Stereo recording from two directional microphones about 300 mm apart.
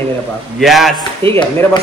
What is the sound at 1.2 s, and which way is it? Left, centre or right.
Speech, centre.